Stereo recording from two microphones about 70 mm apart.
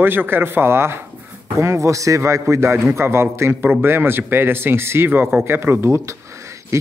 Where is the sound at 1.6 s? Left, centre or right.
Right.